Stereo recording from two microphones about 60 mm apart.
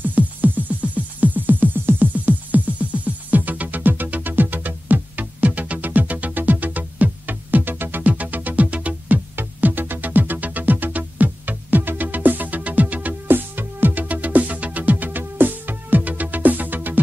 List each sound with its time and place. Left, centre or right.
0.0 s music: right